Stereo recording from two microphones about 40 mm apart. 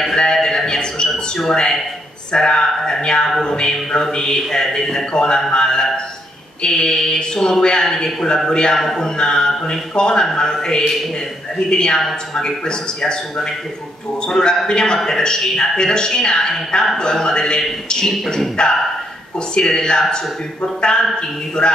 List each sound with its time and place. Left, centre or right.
0.1 s a sound: centre
1.5 s a man's voice: centre
8.7 s a man's voice: centre
9.0 s a man's voice: centre
18.0 s speech: centre
18.6 s a man's voice: left
21.6 s a man's voice: left